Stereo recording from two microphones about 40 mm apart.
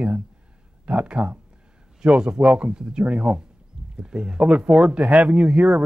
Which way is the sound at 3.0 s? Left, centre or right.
Right.